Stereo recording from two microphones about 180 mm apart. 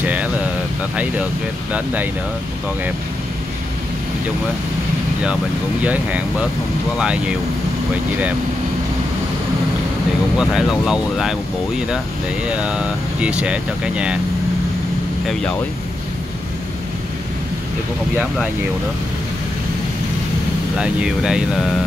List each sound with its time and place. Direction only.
0.0 s a sound: 10° right (ahead or behind)
5.2 s speech: 5° right (ahead or behind)
10.3 s speech: 5° right (ahead or behind)
20.7 s speech: 5° right (ahead or behind)